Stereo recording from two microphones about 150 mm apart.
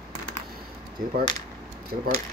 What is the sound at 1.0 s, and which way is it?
Speech, 90° right.